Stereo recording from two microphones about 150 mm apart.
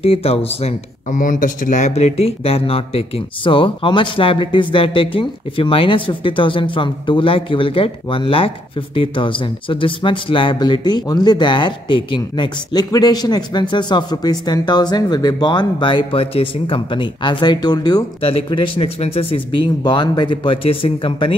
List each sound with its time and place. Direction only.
0.0 s speech: 40° left (ahead or behind)
1.1 s speech: 60° left (ahead or behind); by 21.4 s 35° left (ahead or behind)